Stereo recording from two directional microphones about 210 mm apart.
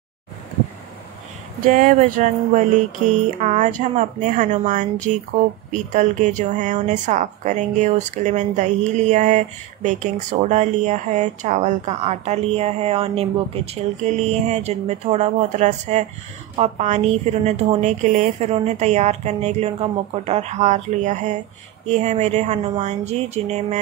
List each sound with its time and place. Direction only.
1.6 s a woman's voice: 40° right (ahead or behind)